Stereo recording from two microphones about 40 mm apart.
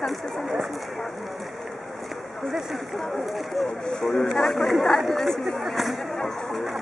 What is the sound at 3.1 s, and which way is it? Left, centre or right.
Speech, centre.